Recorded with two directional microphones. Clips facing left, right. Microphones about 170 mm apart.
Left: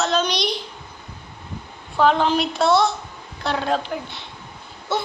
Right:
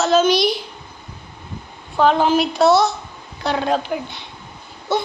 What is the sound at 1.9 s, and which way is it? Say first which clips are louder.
A child's voice: right 2 dB; 5° right (ahead or behind).